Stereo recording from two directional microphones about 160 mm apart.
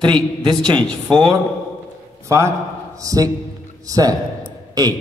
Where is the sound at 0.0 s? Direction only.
25° right (ahead or behind).